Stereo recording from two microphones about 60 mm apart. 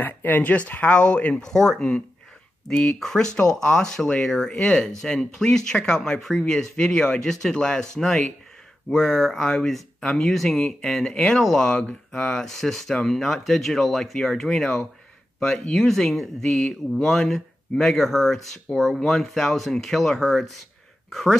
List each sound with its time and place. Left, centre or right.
0.0 s speech: left; by 21.4 s centre